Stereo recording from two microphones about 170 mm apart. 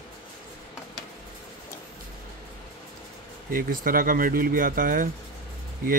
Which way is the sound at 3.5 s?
55° right (ahead or behind).